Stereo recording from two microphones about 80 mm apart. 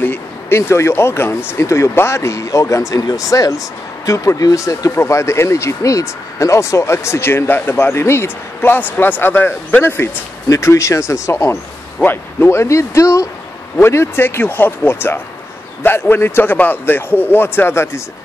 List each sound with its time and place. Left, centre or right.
0.0 s speech: left
4.9 s a man's voice: left
13.7 s a man's voice: left